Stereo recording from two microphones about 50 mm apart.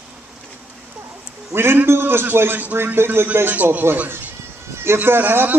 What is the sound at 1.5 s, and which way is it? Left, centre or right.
A man's voice, right.